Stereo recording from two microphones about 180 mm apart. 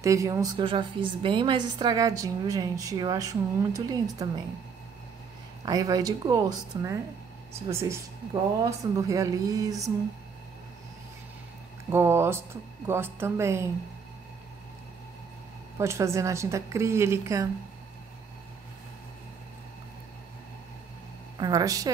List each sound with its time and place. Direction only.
0.0 s a woman's voice: 15° right (ahead or behind)
5.7 s a woman's voice: 20° right (ahead or behind)
11.9 s a woman's voice: 15° right (ahead or behind)
15.8 s a woman's voice: 15° right (ahead or behind)
21.4 s a woman's voice: 20° right (ahead or behind)